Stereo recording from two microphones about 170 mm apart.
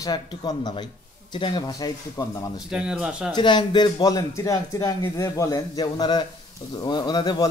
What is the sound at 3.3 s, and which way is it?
A man's voice, 25° left (ahead or behind).